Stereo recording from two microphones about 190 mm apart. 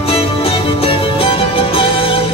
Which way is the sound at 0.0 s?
30° left (ahead or behind).